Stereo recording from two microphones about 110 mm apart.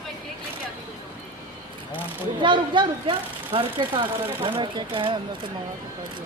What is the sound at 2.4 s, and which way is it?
Speech, 45° right (ahead or behind).